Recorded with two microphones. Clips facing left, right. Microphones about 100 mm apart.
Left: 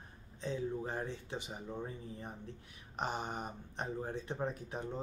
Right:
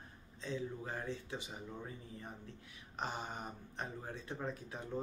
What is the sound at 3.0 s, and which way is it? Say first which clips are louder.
Speech: left 4 dB; 20° left (ahead or behind).